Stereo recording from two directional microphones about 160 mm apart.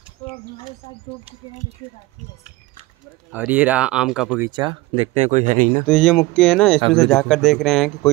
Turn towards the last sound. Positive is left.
turn(degrees=0)  # may be behind; listen again after turning